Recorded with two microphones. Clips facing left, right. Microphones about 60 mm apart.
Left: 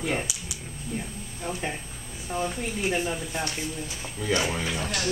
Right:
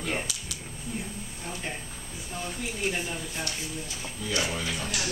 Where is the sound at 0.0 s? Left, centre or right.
Centre.